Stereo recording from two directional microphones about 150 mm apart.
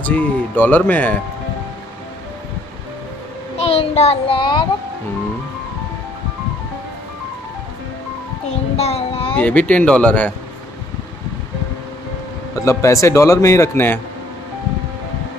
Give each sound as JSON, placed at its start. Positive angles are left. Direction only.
{"t": 0.0, "sound": "speech", "side_deg": 10}
{"t": 3.5, "sound": "child singing", "side_deg": 45}
{"t": 4.4, "sound": "speech", "side_deg": 30}
{"t": 8.7, "sound": "child singing", "side_deg": 45}
{"t": 9.3, "sound": "speech", "side_deg": 10}
{"t": 12.5, "sound": "a man's voice", "side_deg": 20}